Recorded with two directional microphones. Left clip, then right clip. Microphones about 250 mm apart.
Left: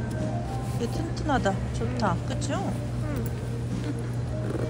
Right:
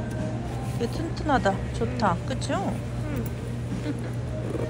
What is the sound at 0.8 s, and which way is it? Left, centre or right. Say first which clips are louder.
Speech: right 3 dB; centre.